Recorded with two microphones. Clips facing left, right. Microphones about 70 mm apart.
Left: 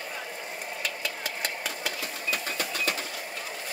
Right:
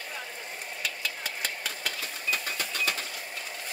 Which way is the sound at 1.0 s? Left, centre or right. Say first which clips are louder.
Left 2 dB; centre.